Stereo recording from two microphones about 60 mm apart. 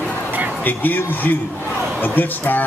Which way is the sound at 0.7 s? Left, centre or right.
Left.